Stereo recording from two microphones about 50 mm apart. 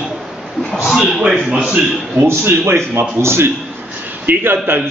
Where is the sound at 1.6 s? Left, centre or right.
Right.